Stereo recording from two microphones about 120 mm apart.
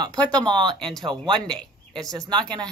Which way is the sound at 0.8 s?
5° left (ahead or behind).